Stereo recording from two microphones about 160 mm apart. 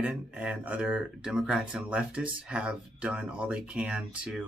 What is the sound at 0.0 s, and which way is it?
Speech, 10° right (ahead or behind).